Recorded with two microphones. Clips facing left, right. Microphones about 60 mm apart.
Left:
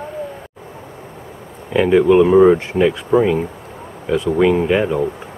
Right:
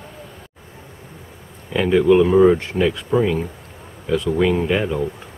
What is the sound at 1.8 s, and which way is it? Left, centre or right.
Speech, centre.